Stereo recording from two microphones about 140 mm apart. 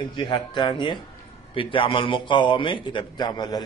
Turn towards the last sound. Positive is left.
turn(degrees=30)  # may be behind; listen again after turning